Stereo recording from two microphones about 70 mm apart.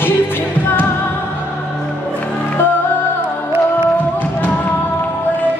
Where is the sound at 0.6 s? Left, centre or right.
Left.